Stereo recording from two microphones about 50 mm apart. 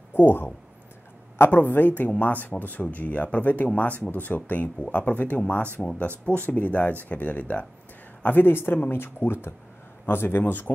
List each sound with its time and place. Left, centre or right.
0.1 s speech: left
8.5 s speech: left